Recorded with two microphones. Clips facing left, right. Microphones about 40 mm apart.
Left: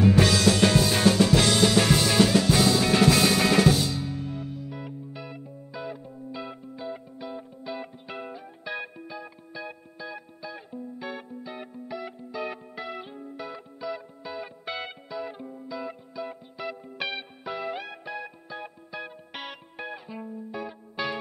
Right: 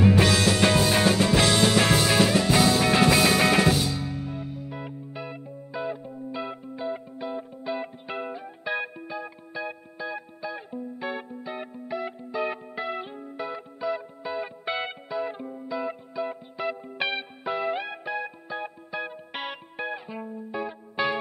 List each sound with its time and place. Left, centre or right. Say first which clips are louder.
0.3 s music: even; right